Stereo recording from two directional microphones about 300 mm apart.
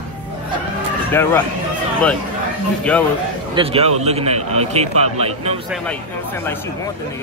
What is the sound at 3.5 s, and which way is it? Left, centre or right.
A man's voice, centre.